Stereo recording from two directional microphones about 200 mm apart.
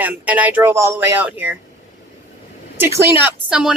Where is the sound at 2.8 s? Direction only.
5° right (ahead or behind).